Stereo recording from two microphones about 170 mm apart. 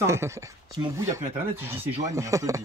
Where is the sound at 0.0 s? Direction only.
15° right (ahead or behind).